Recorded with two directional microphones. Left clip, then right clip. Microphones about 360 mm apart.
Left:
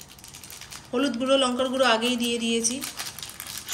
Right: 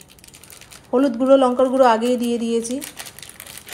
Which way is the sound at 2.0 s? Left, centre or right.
Right.